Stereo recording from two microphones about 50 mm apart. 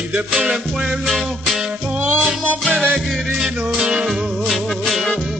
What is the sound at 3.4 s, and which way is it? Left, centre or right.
Music, centre.